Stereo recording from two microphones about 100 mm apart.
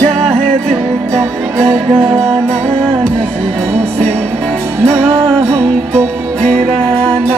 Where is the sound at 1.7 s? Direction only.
70° right (ahead or behind).